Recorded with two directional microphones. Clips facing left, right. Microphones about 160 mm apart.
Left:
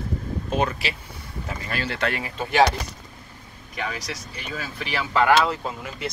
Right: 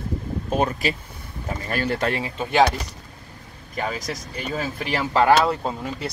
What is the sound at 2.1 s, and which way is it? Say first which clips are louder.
Speech: right 2 dB; 25° right (ahead or behind).